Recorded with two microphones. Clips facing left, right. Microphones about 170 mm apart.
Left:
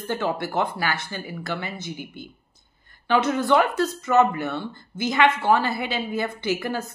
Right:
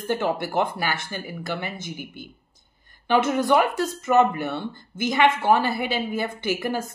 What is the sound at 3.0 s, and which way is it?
A woman's voice, 15° right (ahead or behind).